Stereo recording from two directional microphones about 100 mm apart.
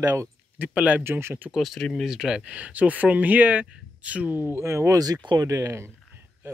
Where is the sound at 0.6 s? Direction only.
15° right (ahead or behind).